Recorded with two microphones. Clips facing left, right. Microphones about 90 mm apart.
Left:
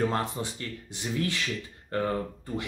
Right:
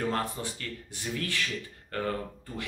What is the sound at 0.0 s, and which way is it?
Speech, 20° left (ahead or behind).